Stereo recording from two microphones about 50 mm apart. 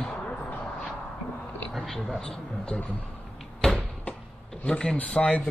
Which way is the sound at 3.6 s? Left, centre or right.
Centre.